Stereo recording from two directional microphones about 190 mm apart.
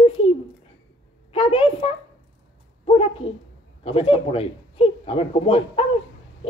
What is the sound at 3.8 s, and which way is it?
Speech, 30° left (ahead or behind).